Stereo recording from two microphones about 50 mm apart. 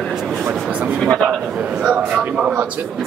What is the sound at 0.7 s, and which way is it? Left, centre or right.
Speech, right.